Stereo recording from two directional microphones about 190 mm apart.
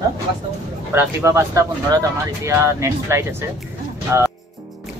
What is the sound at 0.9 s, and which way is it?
Speech, 15° right (ahead or behind).